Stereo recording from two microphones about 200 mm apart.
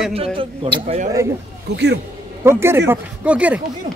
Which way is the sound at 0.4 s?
25° right (ahead or behind).